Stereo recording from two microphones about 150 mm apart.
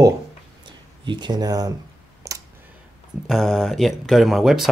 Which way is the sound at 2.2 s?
20° right (ahead or behind).